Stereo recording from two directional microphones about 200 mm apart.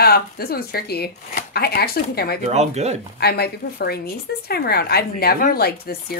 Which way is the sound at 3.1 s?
50° left (ahead or behind).